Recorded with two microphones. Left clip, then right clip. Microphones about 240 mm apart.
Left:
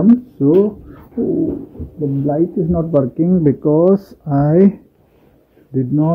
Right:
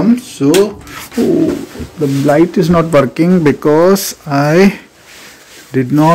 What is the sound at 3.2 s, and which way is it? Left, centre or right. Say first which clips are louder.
Speech: right 5 dB; centre.